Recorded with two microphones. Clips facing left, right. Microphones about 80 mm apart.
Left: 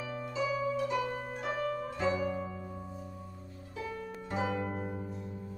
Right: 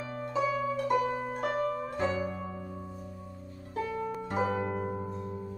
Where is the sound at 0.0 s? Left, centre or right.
Right.